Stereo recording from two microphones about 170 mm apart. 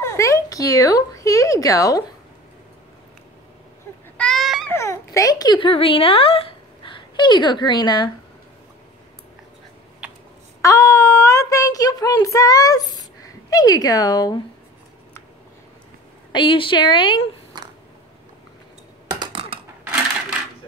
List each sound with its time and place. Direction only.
0.0 s speech: 15° left (ahead or behind)
4.2 s a sound: centre (ahead or behind)
4.7 s a child's voice: 15° left (ahead or behind)
10.6 s a woman's voice: 20° left (ahead or behind)
16.3 s a woman's voice: 30° left (ahead or behind)
17.5 s a sound: 25° right (ahead or behind)
19.0 s computer keyboard: 25° right (ahead or behind)